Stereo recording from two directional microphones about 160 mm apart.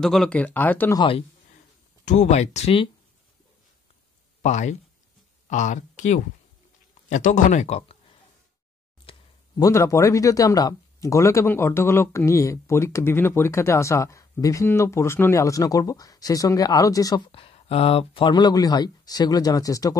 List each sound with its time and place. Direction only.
0.0 s speech: centre (ahead or behind)
0.9 s a man's voice: 35° left (ahead or behind)
2.0 s speech: 45° left (ahead or behind)
4.4 s speech: 50° left (ahead or behind)
9.1 s a sound: 35° left (ahead or behind)
9.6 s speech: 20° left (ahead or behind)
17.3 s speech: 35° left (ahead or behind)